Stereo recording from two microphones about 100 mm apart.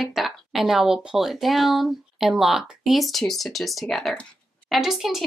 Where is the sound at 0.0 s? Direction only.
Centre (ahead or behind).